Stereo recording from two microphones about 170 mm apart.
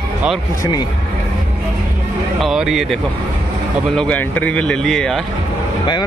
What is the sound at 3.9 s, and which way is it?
Speech, 10° left (ahead or behind).